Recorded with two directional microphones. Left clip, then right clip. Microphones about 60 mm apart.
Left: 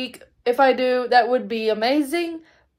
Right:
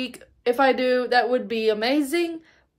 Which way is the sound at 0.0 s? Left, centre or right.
Right.